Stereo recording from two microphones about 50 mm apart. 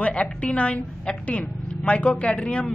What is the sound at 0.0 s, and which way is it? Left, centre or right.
A woman's voice, left.